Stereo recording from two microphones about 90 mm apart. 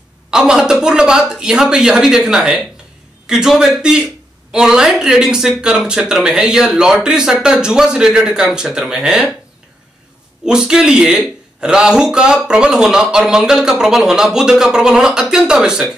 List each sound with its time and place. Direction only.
0.3 s a woman's voice: 5° right (ahead or behind)
10.4 s speech: 10° right (ahead or behind)